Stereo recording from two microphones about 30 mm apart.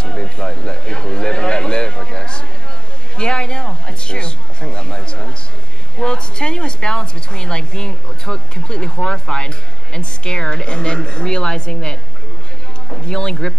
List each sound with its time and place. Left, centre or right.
0.0 s a sound: left
5.9 s a woman's voice: left
13.0 s a woman's voice: left